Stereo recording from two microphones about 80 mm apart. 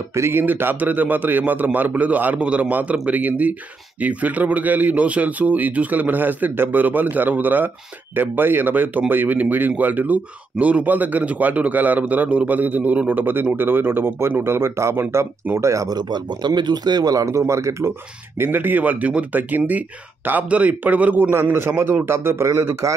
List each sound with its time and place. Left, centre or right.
0.1 s a man's voice: right
15.7 s speech: right
16.0 s speech: right
18.4 s a man's voice: right